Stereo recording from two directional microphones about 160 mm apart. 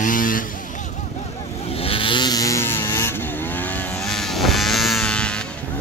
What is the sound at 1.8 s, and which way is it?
Vehicle, 35° left (ahead or behind).